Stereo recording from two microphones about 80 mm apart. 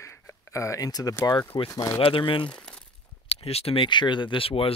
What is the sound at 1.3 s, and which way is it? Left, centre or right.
Speech, left.